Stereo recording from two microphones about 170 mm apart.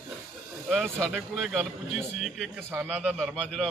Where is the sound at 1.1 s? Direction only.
Centre (ahead or behind).